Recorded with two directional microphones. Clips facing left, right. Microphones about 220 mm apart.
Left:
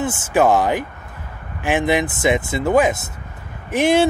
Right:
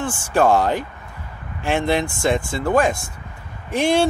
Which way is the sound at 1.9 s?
20° left (ahead or behind).